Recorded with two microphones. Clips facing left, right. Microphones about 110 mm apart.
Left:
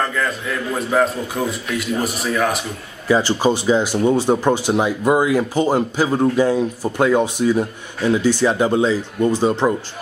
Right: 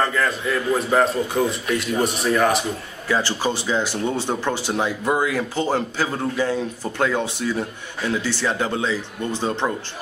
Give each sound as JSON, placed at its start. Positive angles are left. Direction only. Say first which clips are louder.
{"t": 0.0, "sound": "a man's voice", "louder": "even", "side_deg": 0}
{"t": 3.1, "sound": "speech", "louder": "left 6 dB", "side_deg": 15}